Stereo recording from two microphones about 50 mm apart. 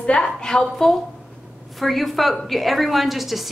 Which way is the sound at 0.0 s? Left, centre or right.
Left.